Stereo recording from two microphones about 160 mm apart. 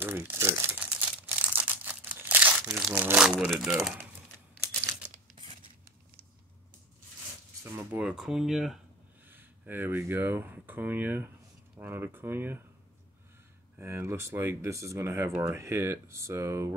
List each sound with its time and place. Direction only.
0.0 s crumpling: 15° right (ahead or behind)
3.3 s speech: centre (ahead or behind)
7.6 s speech: 10° right (ahead or behind)
13.7 s speech: 15° right (ahead or behind)